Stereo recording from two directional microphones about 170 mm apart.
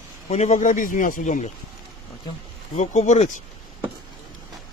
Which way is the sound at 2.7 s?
40° left (ahead or behind).